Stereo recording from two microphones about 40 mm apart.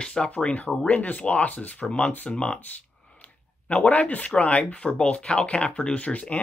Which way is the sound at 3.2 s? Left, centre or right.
Left.